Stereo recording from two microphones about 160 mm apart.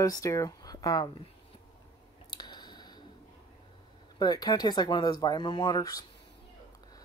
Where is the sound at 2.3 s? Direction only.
25° left (ahead or behind).